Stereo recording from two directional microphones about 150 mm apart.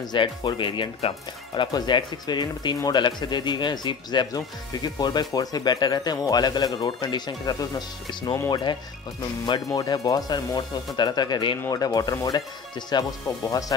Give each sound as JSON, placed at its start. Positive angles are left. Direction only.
{"t": 0.0, "sound": "speech", "side_deg": 30}